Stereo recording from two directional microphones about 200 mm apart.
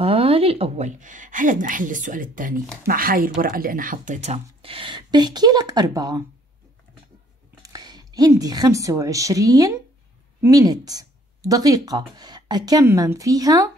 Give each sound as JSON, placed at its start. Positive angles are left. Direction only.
{"t": 0.0, "sound": "speech", "side_deg": -30}
{"t": 7.6, "sound": "a woman's voice", "side_deg": -20}